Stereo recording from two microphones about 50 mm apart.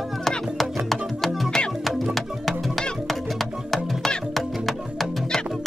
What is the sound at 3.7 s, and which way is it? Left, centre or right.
Music, centre.